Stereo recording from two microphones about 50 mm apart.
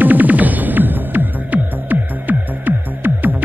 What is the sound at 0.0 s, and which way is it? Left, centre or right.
Music, right.